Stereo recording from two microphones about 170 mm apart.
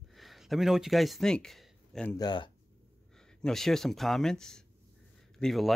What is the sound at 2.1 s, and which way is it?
Speech, 25° left (ahead or behind).